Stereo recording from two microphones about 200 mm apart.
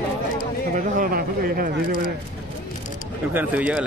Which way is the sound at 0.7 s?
45° right (ahead or behind).